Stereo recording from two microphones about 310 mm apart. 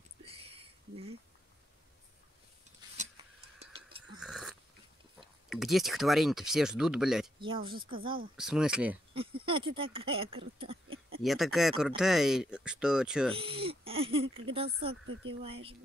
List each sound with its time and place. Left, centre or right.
0.2 s a sound: centre
3.0 s a sound: right
4.2 s dog: centre
5.5 s speech: centre
7.3 s speech: centre
8.4 s speech: centre
9.4 s speech: centre
11.2 s speech: centre
13.3 s speech: centre